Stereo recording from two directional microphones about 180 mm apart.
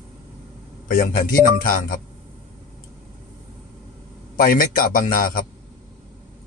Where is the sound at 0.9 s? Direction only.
50° left (ahead or behind).